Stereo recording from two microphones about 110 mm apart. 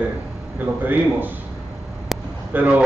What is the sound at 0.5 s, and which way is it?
Speech, 15° right (ahead or behind).